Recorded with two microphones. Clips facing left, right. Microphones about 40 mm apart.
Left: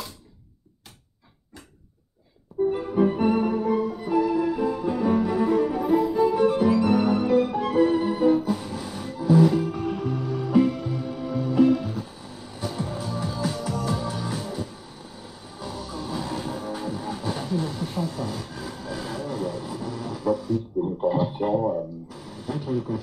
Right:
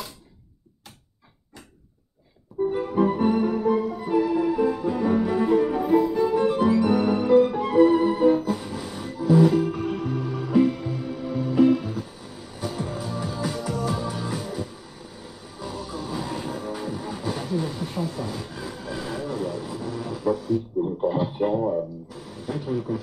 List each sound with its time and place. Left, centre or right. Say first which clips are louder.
2.7 s music: right 1 dB; centre
3.6 s music: right 1 dB; centre
4.9 s cello: even; centre
5.9 s music: left 1 dB; centre
6.6 s music: even; centre
7.3 s violin: right 3 dB; centre
8.0 s music: right 2 dB; centre
9.8 s music: even; centre
12.4 s music: even; centre
15.6 s music: right 1 dB; centre
17.1 s a sound: right 1 dB; centre